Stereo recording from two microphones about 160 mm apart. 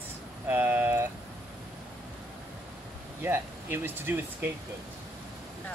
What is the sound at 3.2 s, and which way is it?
Speech, 15° right (ahead or behind).